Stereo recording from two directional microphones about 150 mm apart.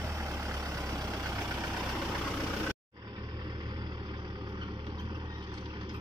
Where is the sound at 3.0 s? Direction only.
30° right (ahead or behind).